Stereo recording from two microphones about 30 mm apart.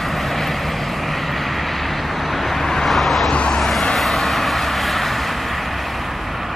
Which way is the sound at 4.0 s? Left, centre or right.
Centre.